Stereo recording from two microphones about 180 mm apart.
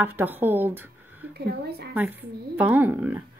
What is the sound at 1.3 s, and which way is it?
Speech, 60° right (ahead or behind).